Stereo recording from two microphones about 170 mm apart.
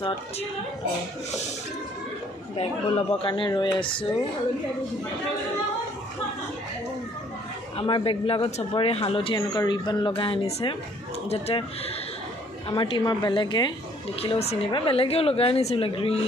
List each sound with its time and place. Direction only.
2.5 s speech: 35° left (ahead or behind)
7.7 s speech: 30° left (ahead or behind)
12.6 s speech: 30° left (ahead or behind)
14.2 s speech: 35° left (ahead or behind)